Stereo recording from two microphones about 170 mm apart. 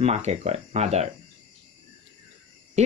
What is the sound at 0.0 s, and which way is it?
Speech, 40° right (ahead or behind).